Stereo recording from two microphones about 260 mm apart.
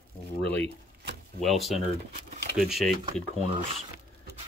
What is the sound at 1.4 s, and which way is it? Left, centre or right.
Speech, centre.